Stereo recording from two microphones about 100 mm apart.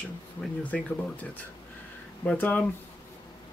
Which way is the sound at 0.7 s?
10° left (ahead or behind).